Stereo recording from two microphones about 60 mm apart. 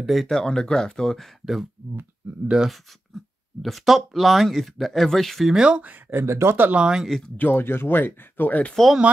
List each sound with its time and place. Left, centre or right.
0.0 s speech: centre
0.4 s speech: centre
1.4 s speech: centre
3.6 s speech: centre
5.6 s speech: centre
6.1 s speech: right
6.7 s speech: centre
7.1 s speech: centre
7.3 s speech: left